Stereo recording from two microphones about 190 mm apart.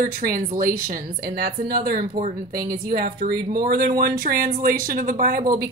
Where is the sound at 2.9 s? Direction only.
50° right (ahead or behind).